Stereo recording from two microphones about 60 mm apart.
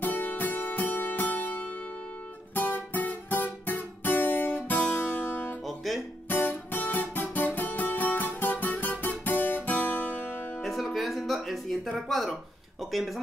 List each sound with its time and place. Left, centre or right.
0.0 s music: left
10.6 s music: centre
12.1 s a sound: centre
12.9 s speech: centre